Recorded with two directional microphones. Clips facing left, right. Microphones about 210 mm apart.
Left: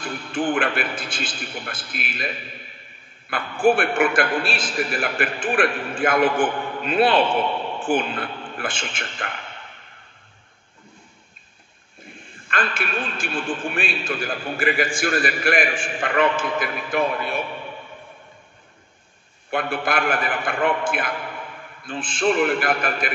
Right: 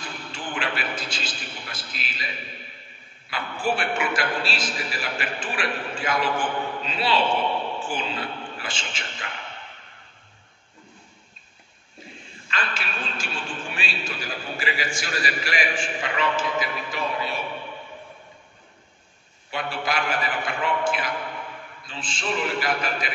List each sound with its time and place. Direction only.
0.0 s a man's voice: 55° left (ahead or behind)
12.0 s a man's voice: 55° left (ahead or behind)
19.5 s a man's voice: 55° left (ahead or behind)